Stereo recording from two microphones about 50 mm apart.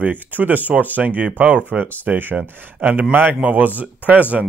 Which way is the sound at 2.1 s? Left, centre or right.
Right.